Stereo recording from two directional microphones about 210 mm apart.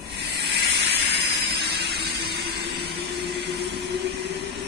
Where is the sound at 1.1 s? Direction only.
50° right (ahead or behind).